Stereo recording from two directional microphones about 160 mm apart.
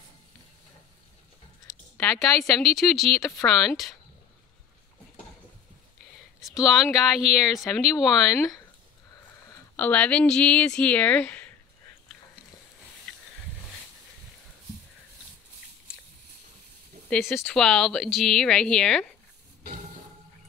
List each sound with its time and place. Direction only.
2.2 s speech: centre (ahead or behind)
6.6 s speech: centre (ahead or behind)
8.4 s speech: 20° left (ahead or behind)
9.8 s speech: 10° left (ahead or behind)
17.1 s speech: centre (ahead or behind)